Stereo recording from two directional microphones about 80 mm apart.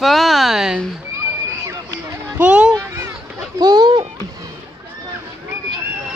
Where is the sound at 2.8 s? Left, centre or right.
Right.